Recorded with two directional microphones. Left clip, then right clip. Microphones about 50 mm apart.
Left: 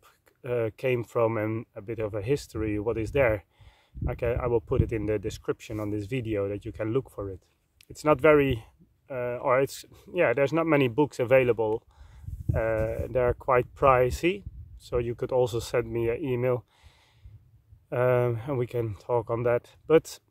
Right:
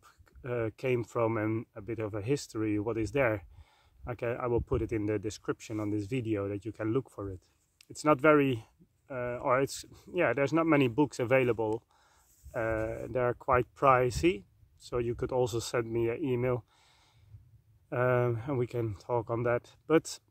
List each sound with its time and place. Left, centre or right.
0.0 s speech: left
12.7 s speech: left
17.8 s speech: left